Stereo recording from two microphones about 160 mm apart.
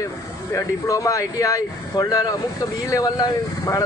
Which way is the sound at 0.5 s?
20° left (ahead or behind).